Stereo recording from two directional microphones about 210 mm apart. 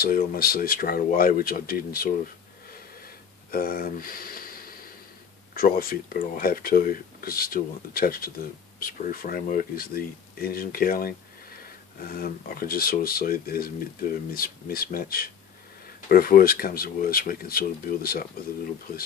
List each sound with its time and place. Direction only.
0.0 s speech: 45° left (ahead or behind)
3.5 s a sound: 45° left (ahead or behind)
5.5 s speech: 45° left (ahead or behind)